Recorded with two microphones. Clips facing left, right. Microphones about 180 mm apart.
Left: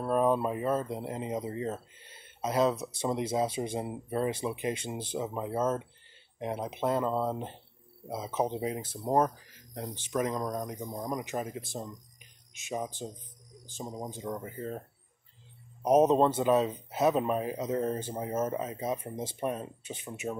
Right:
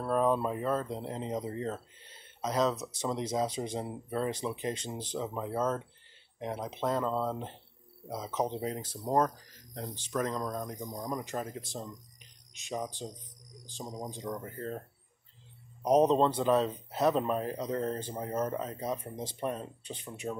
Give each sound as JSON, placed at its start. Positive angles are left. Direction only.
{"t": 0.0, "sound": "speech", "side_deg": 10}
{"t": 10.9, "sound": "speech", "side_deg": 20}
{"t": 11.3, "sound": "speech", "side_deg": 10}
{"t": 12.6, "sound": "speech", "side_deg": 5}